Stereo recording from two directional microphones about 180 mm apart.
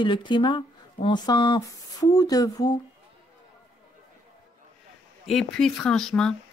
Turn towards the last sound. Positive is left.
turn(degrees=5)  # may be behind; listen again after turning